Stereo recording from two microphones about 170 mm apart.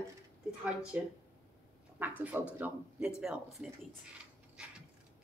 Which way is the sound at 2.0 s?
10° right (ahead or behind).